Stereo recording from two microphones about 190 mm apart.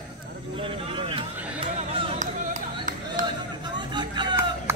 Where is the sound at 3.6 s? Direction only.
25° right (ahead or behind).